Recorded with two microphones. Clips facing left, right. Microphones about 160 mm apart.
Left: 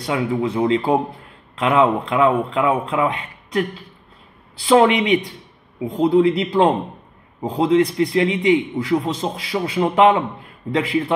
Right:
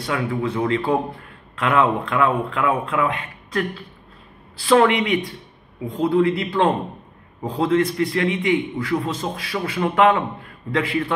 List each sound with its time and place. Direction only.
0.0 s a man's voice: 25° left (ahead or behind)